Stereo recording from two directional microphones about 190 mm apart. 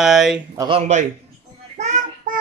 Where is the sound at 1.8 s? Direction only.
40° right (ahead or behind).